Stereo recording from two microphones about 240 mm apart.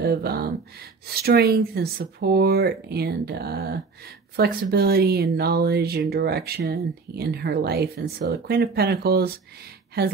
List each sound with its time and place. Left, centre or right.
0.0 s speech: right